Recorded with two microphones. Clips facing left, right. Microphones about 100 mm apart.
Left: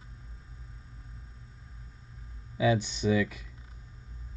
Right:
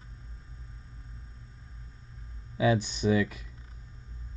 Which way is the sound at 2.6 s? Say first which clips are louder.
Right 1 dB; 45° right (ahead or behind).